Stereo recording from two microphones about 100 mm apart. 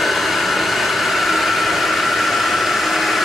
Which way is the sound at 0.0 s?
Centre (ahead or behind).